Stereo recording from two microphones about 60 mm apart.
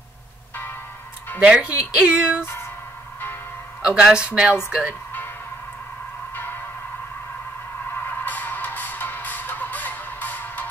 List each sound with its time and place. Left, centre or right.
1.4 s speech: centre
3.8 s speech: centre
6.3 s music: left
7.9 s music: left